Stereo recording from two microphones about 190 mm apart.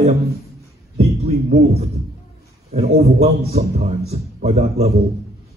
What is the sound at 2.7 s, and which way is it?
A man's voice, 35° right (ahead or behind).